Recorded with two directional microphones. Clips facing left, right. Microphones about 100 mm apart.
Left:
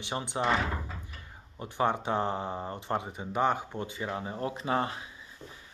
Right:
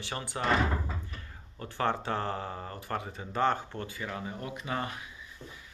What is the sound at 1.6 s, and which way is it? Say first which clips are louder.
Speech: left 2 dB; 15° left (ahead or behind).